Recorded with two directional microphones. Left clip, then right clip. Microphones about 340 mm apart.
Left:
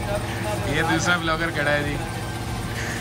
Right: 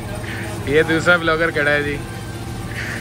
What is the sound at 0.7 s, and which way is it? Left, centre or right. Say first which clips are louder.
Speech: right 8 dB; centre.